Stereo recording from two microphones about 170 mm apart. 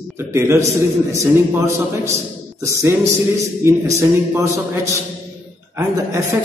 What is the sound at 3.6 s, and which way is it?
A man's voice, 15° right (ahead or behind).